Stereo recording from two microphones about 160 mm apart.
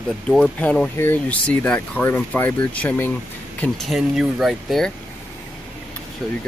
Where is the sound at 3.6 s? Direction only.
Centre (ahead or behind).